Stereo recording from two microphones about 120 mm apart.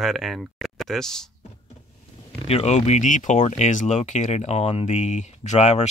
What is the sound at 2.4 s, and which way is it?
Speech, 65° left (ahead or behind).